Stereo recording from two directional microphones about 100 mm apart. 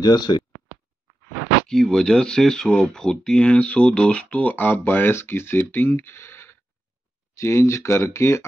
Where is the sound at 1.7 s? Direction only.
5° left (ahead or behind).